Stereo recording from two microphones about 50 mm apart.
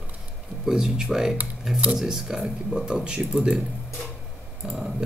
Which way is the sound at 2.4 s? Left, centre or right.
Centre.